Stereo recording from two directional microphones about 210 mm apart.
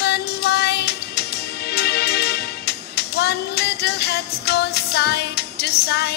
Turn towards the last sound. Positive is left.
turn(degrees=50)  # may be behind; listen again after turning